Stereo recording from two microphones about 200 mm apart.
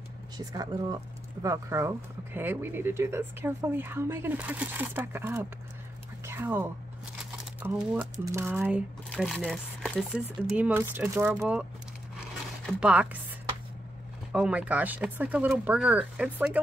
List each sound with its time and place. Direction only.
0.4 s speech: 20° right (ahead or behind)
9.1 s speech: 5° left (ahead or behind)
12.6 s speech: 5° right (ahead or behind)
14.3 s speech: 5° right (ahead or behind)